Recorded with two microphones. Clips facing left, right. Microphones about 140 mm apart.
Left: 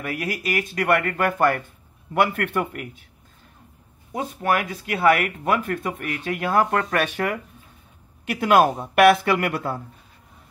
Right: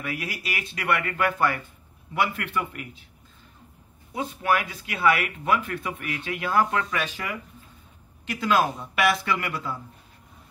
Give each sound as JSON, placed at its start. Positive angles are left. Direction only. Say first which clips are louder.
{"t": 0.0, "sound": "speech", "louder": "left 5 dB", "side_deg": 45}
{"t": 4.1, "sound": "speech", "louder": "left 2 dB", "side_deg": 45}